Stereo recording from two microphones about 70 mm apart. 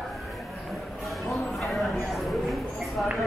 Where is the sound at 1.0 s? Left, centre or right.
Centre.